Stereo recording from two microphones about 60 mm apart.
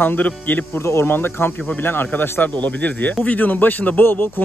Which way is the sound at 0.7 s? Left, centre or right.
Left.